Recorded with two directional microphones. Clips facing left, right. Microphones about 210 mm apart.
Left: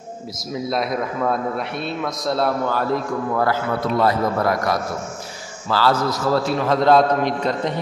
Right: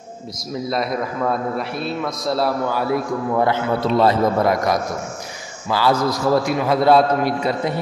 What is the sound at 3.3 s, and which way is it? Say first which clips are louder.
A man's voice: right 3 dB; 20° right (ahead or behind).